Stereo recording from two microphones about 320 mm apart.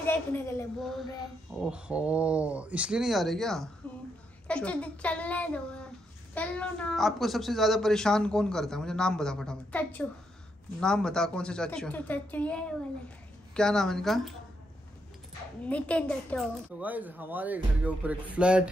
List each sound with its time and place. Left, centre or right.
0.0 s a woman's voice: centre
15.6 s a child's voice: centre